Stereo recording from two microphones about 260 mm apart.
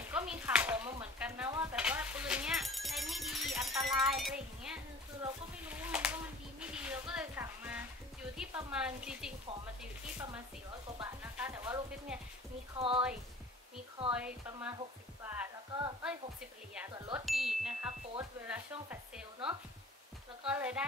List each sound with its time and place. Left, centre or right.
0.1 s chopping: centre
5.2 s a sound: centre
6.6 s speech: centre
11.0 s sizzle: centre
12.7 s speech: right
14.1 s speech: centre
15.2 s music: centre
16.7 s speech: centre
17.2 s chime: centre
18.5 s speech: centre